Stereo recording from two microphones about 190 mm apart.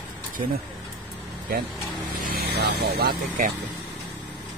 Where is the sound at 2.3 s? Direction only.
60° right (ahead or behind).